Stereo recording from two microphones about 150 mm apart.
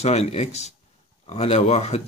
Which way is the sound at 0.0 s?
45° left (ahead or behind).